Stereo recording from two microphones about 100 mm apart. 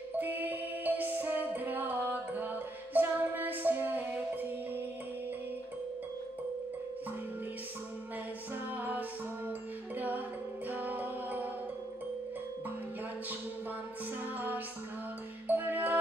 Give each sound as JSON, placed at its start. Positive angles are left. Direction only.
{"t": 0.2, "sound": "music", "side_deg": -15}
{"t": 8.7, "sound": "music", "side_deg": -15}
{"t": 15.4, "sound": "music", "side_deg": -15}